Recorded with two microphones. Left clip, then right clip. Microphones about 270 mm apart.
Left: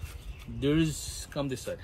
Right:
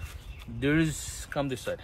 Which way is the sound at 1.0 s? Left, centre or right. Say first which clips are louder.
Right 3 dB; centre.